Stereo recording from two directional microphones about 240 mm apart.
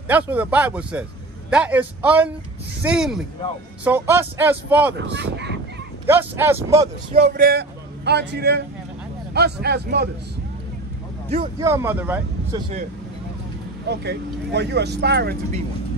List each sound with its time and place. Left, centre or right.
0.1 s speech: centre
4.9 s speech: right
6.0 s speech: centre
7.2 s a man's voice: right
11.6 s speech: centre
12.5 s speech: right
13.8 s speech: right